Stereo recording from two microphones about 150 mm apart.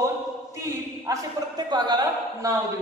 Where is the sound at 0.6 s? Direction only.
25° right (ahead or behind).